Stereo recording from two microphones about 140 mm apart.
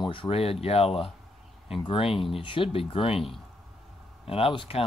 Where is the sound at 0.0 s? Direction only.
35° left (ahead or behind).